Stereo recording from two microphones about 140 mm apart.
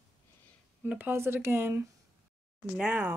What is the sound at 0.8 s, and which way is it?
Speech, 15° right (ahead or behind).